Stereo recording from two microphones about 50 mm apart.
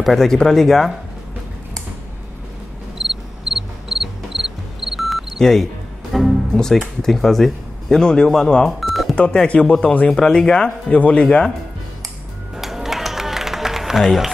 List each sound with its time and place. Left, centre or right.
0.0 s speech: centre
3.0 s music: centre
5.4 s speech: centre
7.0 s speech: centre
10.1 s speech: centre
10.9 s speech: left
11.2 s speech: centre
12.5 s a sound: centre